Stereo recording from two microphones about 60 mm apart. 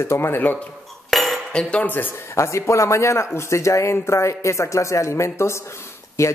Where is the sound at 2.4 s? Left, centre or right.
Left.